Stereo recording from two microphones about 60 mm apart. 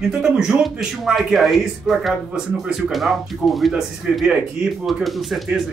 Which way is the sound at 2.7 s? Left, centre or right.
Centre.